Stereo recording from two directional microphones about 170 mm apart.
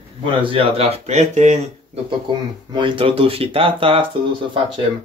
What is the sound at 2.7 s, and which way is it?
Speech, 30° right (ahead or behind).